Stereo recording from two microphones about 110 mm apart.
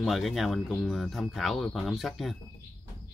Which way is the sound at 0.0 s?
Centre (ahead or behind).